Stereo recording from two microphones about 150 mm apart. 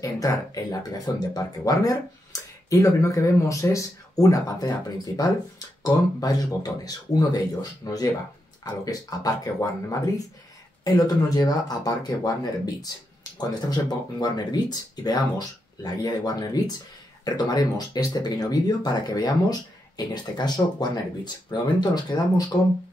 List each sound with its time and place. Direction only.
0.0 s speech: 20° left (ahead or behind)
13.4 s speech: 25° left (ahead or behind)